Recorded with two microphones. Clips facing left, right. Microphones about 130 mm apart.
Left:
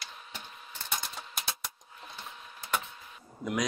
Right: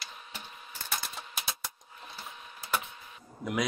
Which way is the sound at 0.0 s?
5° right (ahead or behind).